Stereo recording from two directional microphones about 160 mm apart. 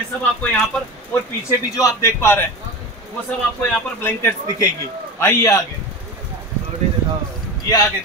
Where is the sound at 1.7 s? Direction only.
20° left (ahead or behind).